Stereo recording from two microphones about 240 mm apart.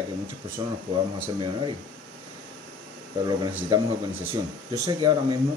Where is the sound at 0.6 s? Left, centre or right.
Centre.